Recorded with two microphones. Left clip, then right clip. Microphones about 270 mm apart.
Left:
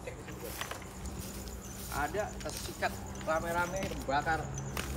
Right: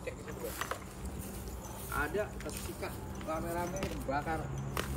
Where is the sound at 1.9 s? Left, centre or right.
Centre.